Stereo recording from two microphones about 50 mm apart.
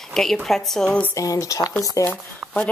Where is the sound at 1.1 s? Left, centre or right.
Left.